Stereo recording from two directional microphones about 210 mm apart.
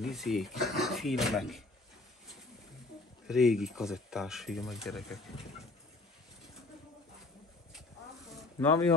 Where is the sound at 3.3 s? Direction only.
Centre (ahead or behind).